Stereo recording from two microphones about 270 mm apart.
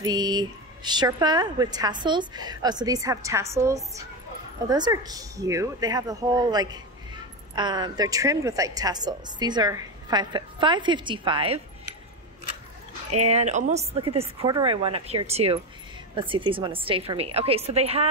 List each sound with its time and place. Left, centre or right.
0.0 s a woman's voice: centre
13.2 s a woman's voice: right